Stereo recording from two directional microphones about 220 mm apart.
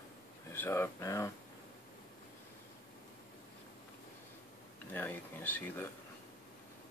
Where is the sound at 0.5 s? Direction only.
10° left (ahead or behind).